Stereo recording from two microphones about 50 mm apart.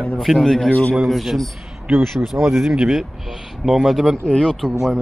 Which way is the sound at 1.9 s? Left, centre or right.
Right.